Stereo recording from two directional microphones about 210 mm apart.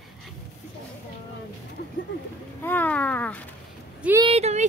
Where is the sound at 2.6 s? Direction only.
10° left (ahead or behind).